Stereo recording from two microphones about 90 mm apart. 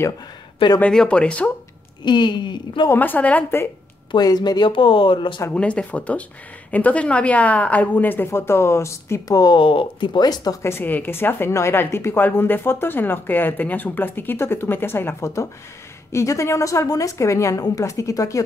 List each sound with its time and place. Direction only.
0.7 s a woman's voice: 15° left (ahead or behind)
2.0 s speech: 60° left (ahead or behind)
2.9 s a woman's voice: 20° left (ahead or behind)
4.1 s speech: 50° left (ahead or behind); by 5.4 s 65° left (ahead or behind)
5.5 s a woman's voice: 15° left (ahead or behind); by 9.2 s 30° left (ahead or behind)
9.3 s speech: 50° left (ahead or behind)
9.6 s speech: 75° left (ahead or behind); by 10.6 s 45° left (ahead or behind)
10.6 s a woman's voice: 25° left (ahead or behind)